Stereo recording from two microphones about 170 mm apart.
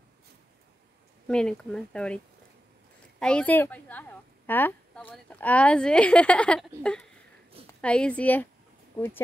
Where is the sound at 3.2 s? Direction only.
5° left (ahead or behind).